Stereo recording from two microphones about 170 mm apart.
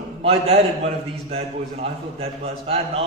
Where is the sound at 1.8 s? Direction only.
35° right (ahead or behind).